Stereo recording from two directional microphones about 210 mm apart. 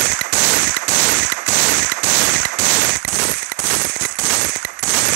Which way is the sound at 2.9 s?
50° right (ahead or behind).